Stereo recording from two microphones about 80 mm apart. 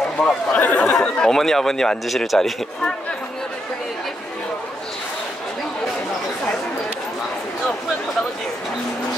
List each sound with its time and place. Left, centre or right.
0.2 s a man's voice: centre